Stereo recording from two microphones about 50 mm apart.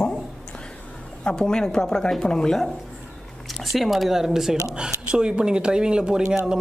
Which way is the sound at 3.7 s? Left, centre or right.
Centre.